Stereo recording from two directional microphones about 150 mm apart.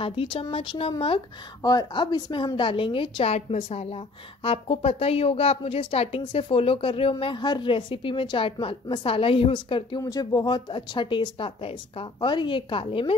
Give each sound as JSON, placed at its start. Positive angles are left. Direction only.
{"t": 0.0, "sound": "speech", "side_deg": 40}